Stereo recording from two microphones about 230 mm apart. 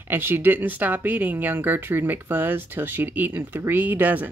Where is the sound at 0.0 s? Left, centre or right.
Centre.